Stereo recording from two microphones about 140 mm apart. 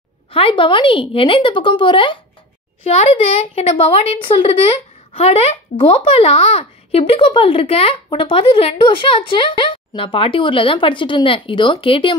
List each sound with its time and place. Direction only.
0.3 s a woman's voice: 40° left (ahead or behind)
2.8 s a woman's voice: 50° left (ahead or behind)